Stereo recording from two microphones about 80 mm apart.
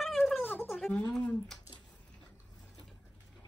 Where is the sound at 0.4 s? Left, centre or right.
Left.